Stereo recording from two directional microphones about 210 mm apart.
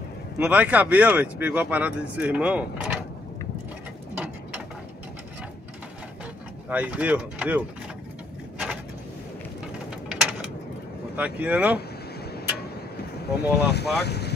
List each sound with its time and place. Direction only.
0.4 s speech: 5° right (ahead or behind)
6.7 s speech: 5° right (ahead or behind)
9.8 s mechanisms: 5° right (ahead or behind)
11.1 s speech: 5° right (ahead or behind)
13.4 s speech: 50° left (ahead or behind)